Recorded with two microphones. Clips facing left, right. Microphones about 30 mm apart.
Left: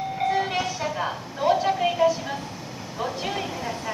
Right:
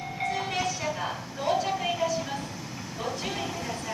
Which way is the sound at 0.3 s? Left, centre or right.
Centre.